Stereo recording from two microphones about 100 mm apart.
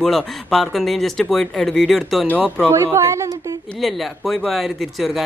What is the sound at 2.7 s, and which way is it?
Speech, 30° right (ahead or behind).